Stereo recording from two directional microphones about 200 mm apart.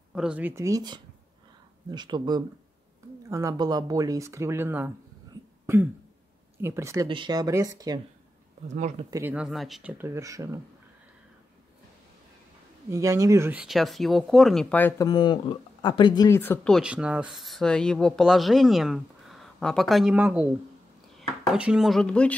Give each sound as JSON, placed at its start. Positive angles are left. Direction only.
{"t": 0.1, "sound": "speech", "side_deg": -5}
{"t": 6.6, "sound": "speech", "side_deg": -15}
{"t": 8.6, "sound": "speech", "side_deg": -35}
{"t": 9.1, "sound": "speech", "side_deg": -10}
{"t": 12.9, "sound": "speech", "side_deg": -15}